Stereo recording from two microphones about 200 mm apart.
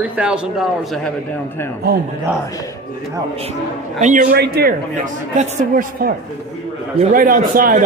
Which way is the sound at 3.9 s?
40° right (ahead or behind).